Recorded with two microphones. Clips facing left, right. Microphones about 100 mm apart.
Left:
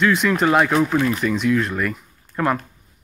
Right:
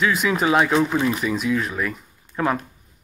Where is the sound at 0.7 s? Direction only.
20° right (ahead or behind).